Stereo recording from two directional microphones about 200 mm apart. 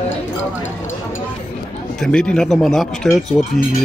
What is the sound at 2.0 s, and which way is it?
Speech, 5° left (ahead or behind).